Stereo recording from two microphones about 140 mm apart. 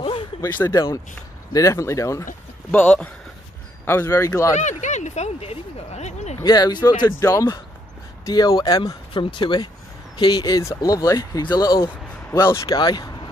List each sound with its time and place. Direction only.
0.4 s speech: 20° left (ahead or behind)
2.7 s speech: 10° left (ahead or behind)
4.6 s speech: 60° left (ahead or behind)
6.4 s speech: 30° left (ahead or behind)
7.1 s speech: 20° left (ahead or behind)